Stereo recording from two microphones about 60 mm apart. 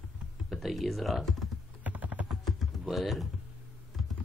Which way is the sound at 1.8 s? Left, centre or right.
Right.